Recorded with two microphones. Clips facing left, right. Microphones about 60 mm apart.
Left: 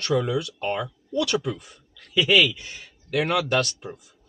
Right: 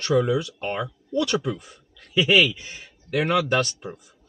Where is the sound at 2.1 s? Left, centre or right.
Centre.